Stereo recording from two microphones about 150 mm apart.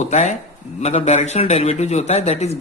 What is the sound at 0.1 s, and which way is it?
A man's voice, 50° left (ahead or behind).